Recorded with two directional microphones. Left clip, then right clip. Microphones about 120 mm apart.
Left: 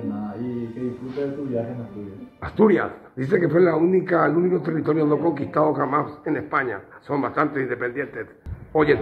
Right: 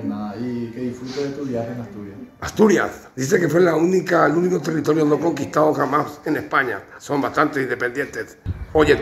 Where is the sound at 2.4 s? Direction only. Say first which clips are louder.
Right 2 dB; 10° right (ahead or behind).